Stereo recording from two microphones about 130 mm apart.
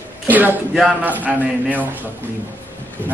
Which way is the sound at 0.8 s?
Centre (ahead or behind).